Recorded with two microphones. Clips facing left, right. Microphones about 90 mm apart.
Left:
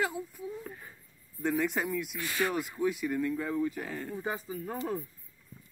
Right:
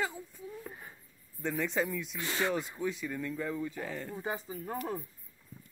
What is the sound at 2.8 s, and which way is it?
Speech, 10° left (ahead or behind).